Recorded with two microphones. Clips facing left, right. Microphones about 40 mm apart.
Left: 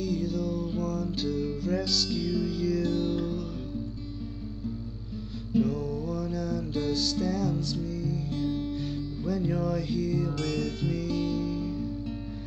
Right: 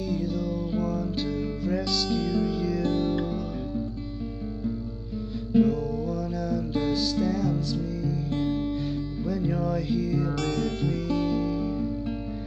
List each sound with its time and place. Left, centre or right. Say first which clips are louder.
0.0 s music: right 1 dB; centre
5.6 s music: right 5 dB; centre
8.3 s music: right 4 dB; right
9.2 s music: right 1 dB; centre